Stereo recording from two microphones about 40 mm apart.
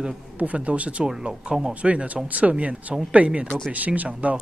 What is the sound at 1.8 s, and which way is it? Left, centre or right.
Speech, right.